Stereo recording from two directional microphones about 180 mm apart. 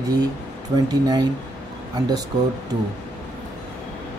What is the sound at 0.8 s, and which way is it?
Speech, 20° right (ahead or behind).